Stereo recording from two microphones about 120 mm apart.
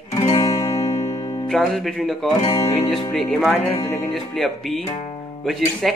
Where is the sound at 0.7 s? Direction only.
65° left (ahead or behind).